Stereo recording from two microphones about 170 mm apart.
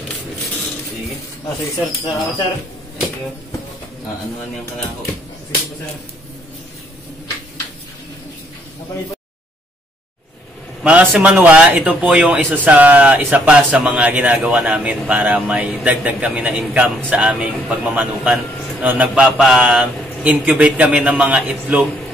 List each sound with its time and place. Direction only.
10.8 s a man's voice: 5° right (ahead or behind)